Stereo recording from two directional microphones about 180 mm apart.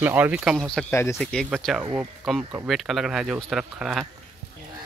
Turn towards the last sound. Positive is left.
turn(degrees=-5)  # may be behind; listen again after turning